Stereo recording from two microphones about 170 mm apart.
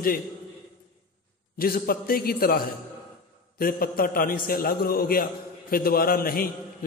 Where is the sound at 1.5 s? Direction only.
60° left (ahead or behind).